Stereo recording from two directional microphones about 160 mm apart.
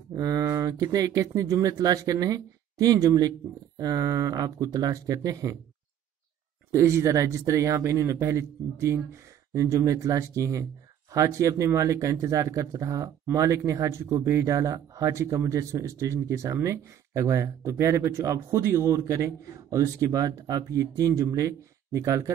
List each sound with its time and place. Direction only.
0.1 s speech: 20° right (ahead or behind)
6.7 s speech: 15° right (ahead or behind)